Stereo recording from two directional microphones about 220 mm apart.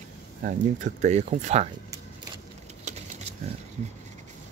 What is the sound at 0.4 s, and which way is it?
Speech, 35° right (ahead or behind).